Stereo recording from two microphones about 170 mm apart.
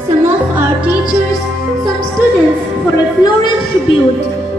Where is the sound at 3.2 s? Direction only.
25° left (ahead or behind).